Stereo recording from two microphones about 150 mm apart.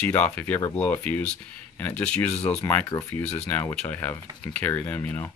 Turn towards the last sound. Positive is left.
turn(degrees=10)  # may be behind; listen again after turning